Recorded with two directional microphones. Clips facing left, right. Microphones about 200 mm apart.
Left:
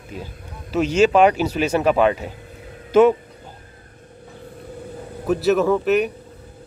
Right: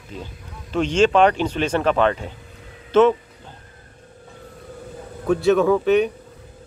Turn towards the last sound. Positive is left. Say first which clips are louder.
# right 1 dB
turn(degrees=0)  # may be behind; listen again after turning